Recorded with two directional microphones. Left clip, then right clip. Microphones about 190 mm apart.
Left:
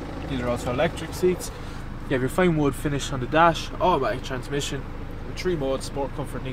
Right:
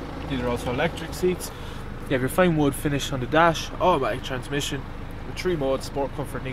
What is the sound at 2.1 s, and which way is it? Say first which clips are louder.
Speech: right 1 dB; 10° right (ahead or behind).